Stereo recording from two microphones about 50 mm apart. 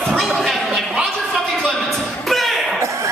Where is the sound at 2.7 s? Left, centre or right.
Right.